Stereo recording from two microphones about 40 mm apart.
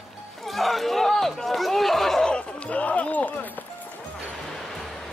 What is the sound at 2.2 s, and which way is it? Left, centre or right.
Run, left.